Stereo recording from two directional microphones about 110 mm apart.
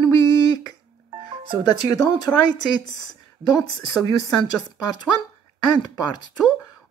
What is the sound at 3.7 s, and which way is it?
Speech, 35° left (ahead or behind).